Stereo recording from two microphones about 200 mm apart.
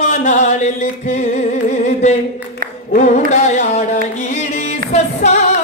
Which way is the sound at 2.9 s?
35° left (ahead or behind).